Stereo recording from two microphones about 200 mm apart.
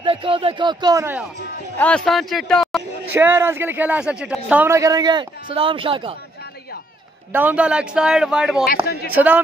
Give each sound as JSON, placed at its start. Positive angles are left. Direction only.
{"t": 0.0, "sound": "speech", "side_deg": -25}
{"t": 1.8, "sound": "speech", "side_deg": 5}
{"t": 3.1, "sound": "a man's voice", "side_deg": -10}
{"t": 7.3, "sound": "speech", "side_deg": -5}
{"t": 8.8, "sound": "speech", "side_deg": 50}
{"t": 9.1, "sound": "a man's voice", "side_deg": -10}